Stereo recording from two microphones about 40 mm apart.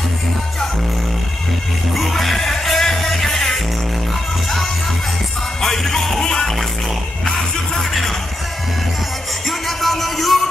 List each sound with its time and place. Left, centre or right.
2.0 s music: centre
5.6 s music: centre
9.5 s music: centre